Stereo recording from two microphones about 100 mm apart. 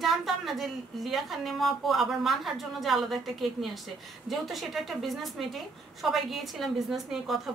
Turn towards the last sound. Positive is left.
turn(degrees=0)  # may be behind; listen again after turning